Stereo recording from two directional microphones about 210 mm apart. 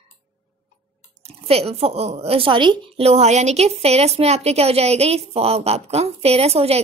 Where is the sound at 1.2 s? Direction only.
30° right (ahead or behind).